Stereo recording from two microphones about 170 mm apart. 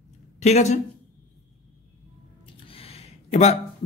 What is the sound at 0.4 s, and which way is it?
Speech, 40° left (ahead or behind).